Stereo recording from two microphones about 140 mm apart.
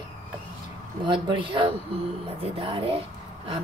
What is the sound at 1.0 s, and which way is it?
A woman's voice, 35° right (ahead or behind).